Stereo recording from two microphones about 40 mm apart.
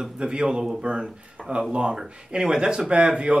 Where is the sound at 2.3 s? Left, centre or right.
Centre.